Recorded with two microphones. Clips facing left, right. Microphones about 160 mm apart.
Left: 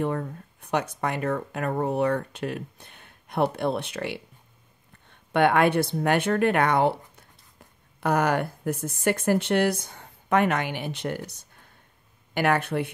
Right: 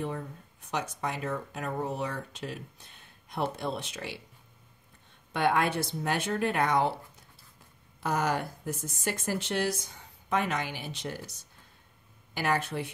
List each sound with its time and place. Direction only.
0.0 s speech: 60° left (ahead or behind)
5.3 s speech: 60° left (ahead or behind)